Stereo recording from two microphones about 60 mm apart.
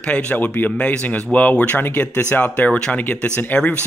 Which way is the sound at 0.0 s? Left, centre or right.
Left.